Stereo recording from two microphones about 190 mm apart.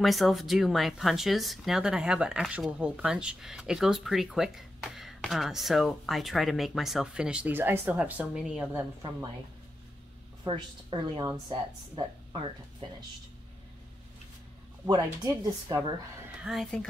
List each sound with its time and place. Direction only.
0.0 s speech: centre (ahead or behind)
10.4 s a woman's voice: 25° right (ahead or behind)
14.9 s a woman's voice: 20° right (ahead or behind)
16.4 s speech: centre (ahead or behind)